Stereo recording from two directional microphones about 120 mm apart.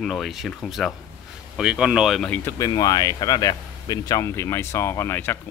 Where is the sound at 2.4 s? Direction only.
30° left (ahead or behind).